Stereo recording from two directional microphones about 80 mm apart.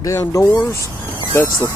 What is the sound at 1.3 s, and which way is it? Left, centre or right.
Speech, left.